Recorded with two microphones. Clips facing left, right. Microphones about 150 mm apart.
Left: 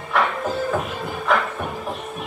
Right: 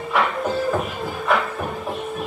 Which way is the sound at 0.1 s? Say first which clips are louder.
Even; centre (ahead or behind).